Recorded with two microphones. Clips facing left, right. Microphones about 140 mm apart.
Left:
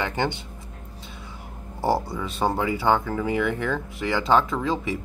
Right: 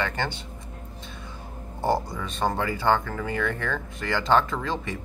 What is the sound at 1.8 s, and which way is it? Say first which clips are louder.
Speech: left 2 dB; 5° left (ahead or behind).